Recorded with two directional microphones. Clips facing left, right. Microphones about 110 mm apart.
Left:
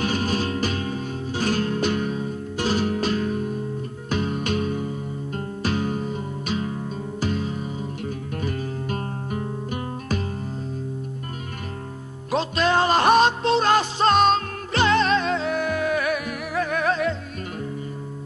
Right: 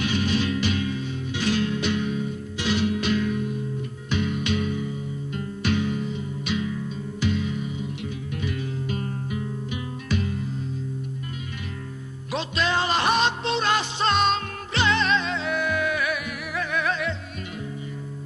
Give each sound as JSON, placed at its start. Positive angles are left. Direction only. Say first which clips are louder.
{"t": 0.0, "sound": "music", "louder": "even", "side_deg": 40}
{"t": 12.3, "sound": "music", "louder": "left 5 dB", "side_deg": 45}